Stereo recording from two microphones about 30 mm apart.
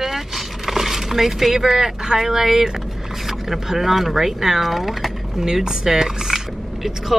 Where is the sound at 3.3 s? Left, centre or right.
Centre.